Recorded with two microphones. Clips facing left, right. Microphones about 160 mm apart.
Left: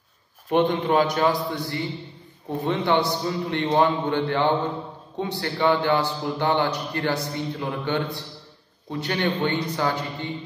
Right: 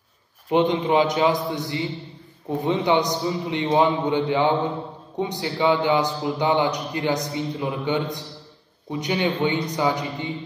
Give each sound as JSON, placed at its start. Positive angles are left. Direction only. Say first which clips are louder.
{"t": 0.5, "sound": "a man's voice", "louder": "right 1 dB", "side_deg": -15}